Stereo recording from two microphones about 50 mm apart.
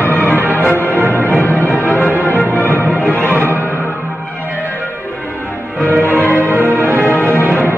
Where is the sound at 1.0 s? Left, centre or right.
Right.